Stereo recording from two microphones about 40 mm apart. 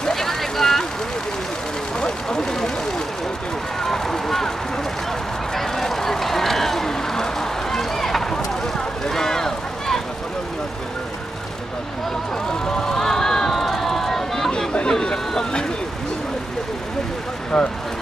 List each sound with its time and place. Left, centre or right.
0.0 s vehicle: centre
2.0 s vehicle: centre
3.8 s run: centre
5.5 s run: centre
12.4 s run: centre
14.9 s a sound: centre
17.5 s a sound: centre